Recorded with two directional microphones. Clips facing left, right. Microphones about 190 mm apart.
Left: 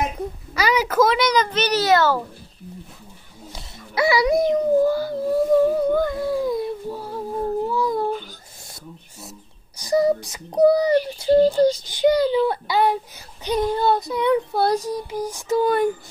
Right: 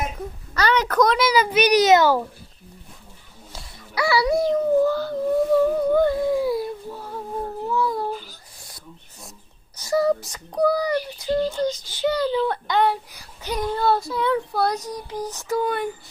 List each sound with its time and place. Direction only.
0.6 s a child's voice: 10° left (ahead or behind); by 2.2 s 15° right (ahead or behind)
3.5 s speech: 20° left (ahead or behind)
5.9 s dog: 20° right (ahead or behind)
6.9 s a sound: 10° left (ahead or behind)
7.7 s babbling: 15° left (ahead or behind)
9.8 s a child's voice: 15° left (ahead or behind); by 11.8 s 35° left (ahead or behind)
11.8 s a child's voice: 15° left (ahead or behind)
12.9 s a child's voice: 20° left (ahead or behind)
15.0 s a child's voice: 10° left (ahead or behind)
15.6 s speech: 40° left (ahead or behind)